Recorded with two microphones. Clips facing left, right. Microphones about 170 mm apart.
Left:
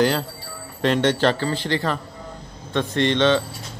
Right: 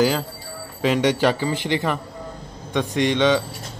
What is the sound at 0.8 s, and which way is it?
A man's voice, 10° right (ahead or behind).